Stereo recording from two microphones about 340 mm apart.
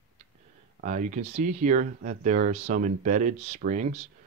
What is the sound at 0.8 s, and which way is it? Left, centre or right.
Speech, right.